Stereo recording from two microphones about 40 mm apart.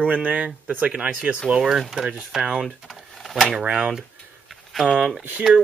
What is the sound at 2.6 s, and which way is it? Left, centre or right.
Speech, centre.